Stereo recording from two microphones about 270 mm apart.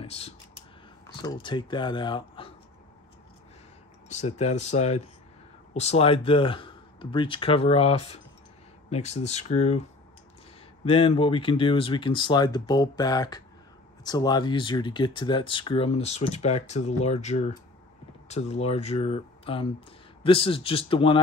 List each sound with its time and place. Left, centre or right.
0.0 s speech: left
4.1 s speech: left
10.9 s speech: left